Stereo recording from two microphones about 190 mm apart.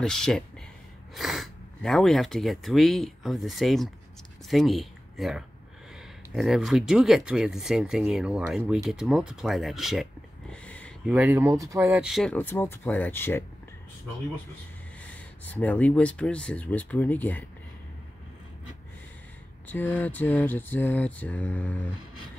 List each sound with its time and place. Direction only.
0.0 s speech: 5° left (ahead or behind)
10.5 s a sound: 5° left (ahead or behind)
11.1 s speech: 10° right (ahead or behind); by 13.4 s 10° left (ahead or behind)
15.0 s speech: 10° left (ahead or behind)
19.7 s speech: 10° left (ahead or behind)